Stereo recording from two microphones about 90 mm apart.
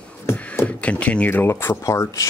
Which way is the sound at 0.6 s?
15° left (ahead or behind).